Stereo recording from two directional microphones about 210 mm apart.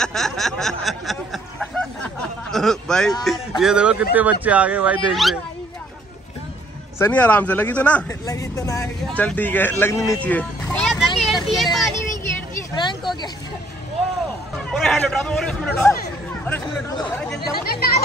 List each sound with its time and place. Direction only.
0.0 s snicker: centre (ahead or behind)
2.5 s a man's voice: centre (ahead or behind)
7.0 s speech: 5° left (ahead or behind)
8.8 s speech: 5° left (ahead or behind)
11.5 s a sound: centre (ahead or behind)
12.7 s vehicle: 20° left (ahead or behind)
14.7 s a man's voice: centre (ahead or behind)
17.4 s speech: 50° left (ahead or behind)